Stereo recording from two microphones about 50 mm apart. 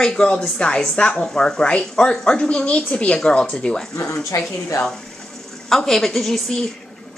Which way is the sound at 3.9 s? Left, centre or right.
Left.